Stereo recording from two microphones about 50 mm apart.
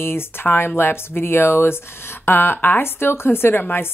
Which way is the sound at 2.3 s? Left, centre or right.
Left.